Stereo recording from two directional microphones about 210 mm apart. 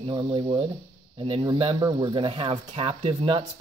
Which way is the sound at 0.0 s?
20° right (ahead or behind).